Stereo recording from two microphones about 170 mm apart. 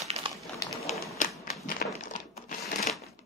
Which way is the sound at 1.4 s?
55° left (ahead or behind).